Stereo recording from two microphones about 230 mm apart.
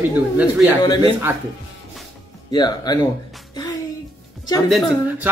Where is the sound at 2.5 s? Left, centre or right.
Centre.